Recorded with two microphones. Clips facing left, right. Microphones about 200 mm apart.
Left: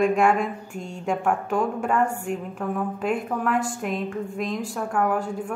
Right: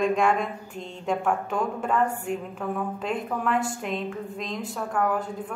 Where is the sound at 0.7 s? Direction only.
45° left (ahead or behind).